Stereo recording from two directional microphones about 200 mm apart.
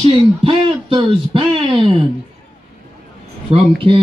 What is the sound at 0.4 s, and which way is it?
A man's voice, 25° right (ahead or behind).